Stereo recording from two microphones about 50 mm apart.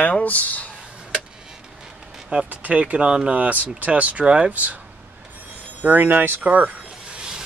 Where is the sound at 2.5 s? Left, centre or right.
Right.